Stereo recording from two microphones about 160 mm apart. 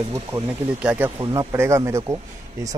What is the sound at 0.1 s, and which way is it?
A man's voice, 10° right (ahead or behind).